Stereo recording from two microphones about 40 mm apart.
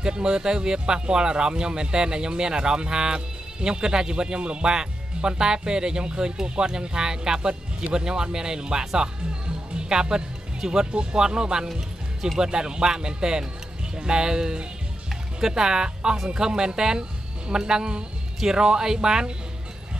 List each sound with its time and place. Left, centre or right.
0.0 s speech: right